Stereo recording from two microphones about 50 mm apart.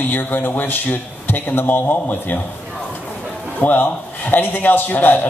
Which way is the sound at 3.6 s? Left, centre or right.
Left.